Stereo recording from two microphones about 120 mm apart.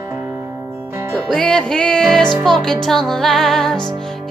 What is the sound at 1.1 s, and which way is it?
Music, 5° left (ahead or behind).